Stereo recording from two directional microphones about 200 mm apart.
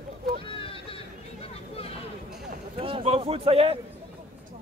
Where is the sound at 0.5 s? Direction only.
25° left (ahead or behind).